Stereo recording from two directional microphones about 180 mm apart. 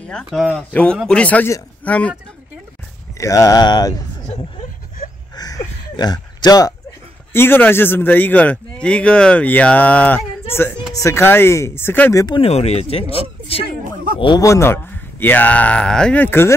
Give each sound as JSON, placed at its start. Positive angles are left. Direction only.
{"t": 0.1, "sound": "a man's voice", "side_deg": 0}
{"t": 3.2, "sound": "speech", "side_deg": 15}
{"t": 5.3, "sound": "a sound", "side_deg": 20}
{"t": 7.3, "sound": "speech", "side_deg": 10}
{"t": 12.4, "sound": "speech", "side_deg": 35}
{"t": 14.2, "sound": "speech", "side_deg": 20}